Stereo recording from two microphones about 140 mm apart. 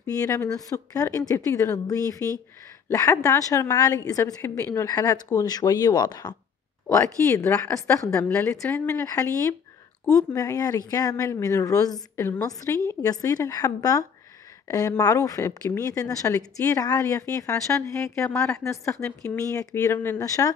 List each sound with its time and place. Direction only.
0.0 s a woman's voice: 20° left (ahead or behind)
7.7 s a woman's voice: 20° left (ahead or behind)